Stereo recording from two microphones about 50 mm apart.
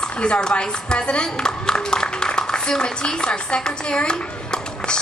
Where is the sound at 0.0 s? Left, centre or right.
Centre.